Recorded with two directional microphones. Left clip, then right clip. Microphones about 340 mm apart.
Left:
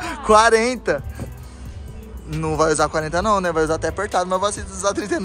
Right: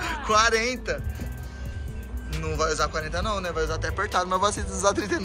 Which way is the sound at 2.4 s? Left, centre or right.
Left.